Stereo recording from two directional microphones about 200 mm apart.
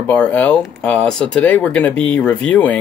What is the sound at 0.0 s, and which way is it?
Speech, 5° left (ahead or behind).